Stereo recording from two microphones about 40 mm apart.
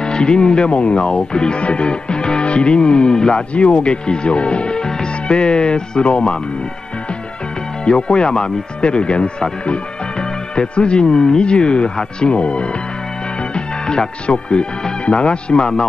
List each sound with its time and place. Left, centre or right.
0.0 s speech: left
7.8 s speech: left
13.8 s speech: left